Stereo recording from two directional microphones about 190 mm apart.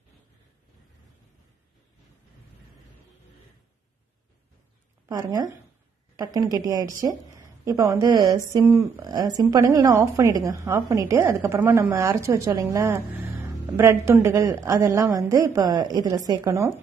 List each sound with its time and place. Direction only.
5.0 s a woman's voice: 20° right (ahead or behind)